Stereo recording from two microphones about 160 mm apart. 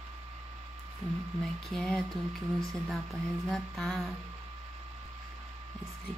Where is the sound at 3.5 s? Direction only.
Centre (ahead or behind).